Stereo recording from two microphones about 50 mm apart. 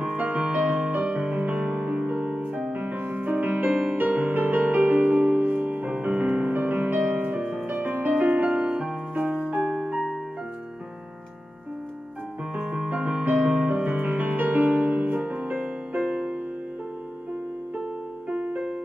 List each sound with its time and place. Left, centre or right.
0.0 s music: right
7.7 s music: right
12.5 s music: right
16.1 s music: right
18.3 s music: right